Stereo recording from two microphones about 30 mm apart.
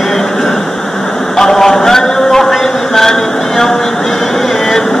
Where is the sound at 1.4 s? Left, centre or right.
Centre.